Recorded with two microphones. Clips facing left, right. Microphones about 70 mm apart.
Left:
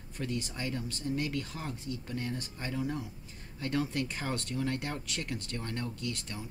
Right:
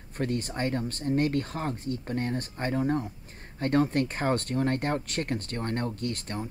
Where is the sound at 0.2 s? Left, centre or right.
Right.